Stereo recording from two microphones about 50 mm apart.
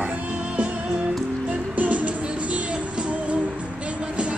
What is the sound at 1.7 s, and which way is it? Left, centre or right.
Music, right.